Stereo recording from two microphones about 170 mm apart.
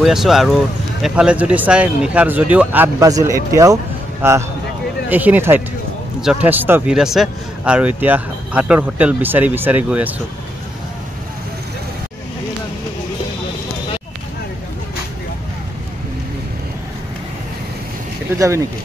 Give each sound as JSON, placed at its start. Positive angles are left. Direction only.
{"t": 0.0, "sound": "speech", "side_deg": 0}
{"t": 18.4, "sound": "speech", "side_deg": -20}